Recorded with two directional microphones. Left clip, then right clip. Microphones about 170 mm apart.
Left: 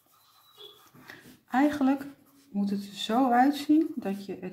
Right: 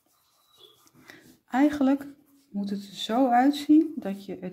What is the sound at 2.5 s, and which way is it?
Speech, 35° right (ahead or behind).